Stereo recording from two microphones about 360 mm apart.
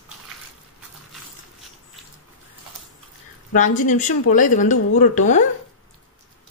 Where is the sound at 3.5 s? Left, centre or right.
Left.